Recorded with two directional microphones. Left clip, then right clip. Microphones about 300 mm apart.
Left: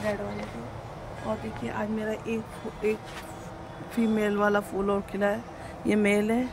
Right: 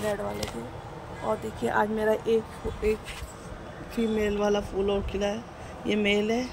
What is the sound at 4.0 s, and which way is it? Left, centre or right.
Speech, centre.